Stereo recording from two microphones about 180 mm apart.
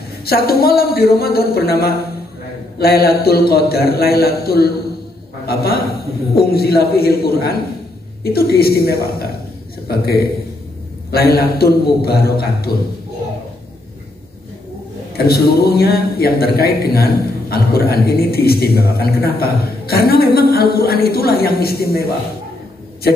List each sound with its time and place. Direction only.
0.2 s speech: 60° left (ahead or behind)
15.2 s speech: 60° left (ahead or behind)